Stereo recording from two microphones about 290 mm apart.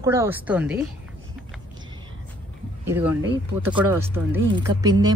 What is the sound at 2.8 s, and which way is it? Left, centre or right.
Speech, centre.